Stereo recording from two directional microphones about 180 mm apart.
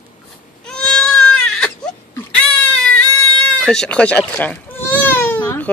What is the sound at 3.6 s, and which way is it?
Baby cry, 5° left (ahead or behind).